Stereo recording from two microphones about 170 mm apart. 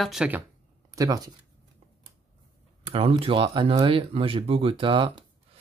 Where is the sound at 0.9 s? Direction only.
20° right (ahead or behind).